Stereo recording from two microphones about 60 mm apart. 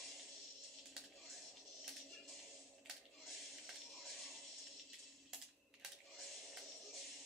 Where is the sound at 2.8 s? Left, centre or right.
Centre.